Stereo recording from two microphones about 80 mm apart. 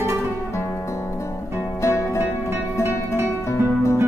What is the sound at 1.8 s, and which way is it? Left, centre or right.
Music, left.